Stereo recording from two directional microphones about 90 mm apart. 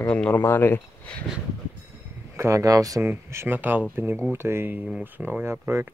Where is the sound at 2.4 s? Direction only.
35° right (ahead or behind).